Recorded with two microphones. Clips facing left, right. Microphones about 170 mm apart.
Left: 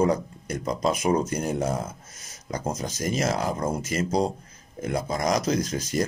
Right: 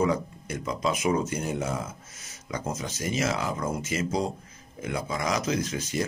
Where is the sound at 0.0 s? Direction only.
40° left (ahead or behind).